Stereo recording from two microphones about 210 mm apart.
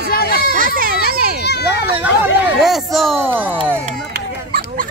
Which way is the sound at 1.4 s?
50° left (ahead or behind).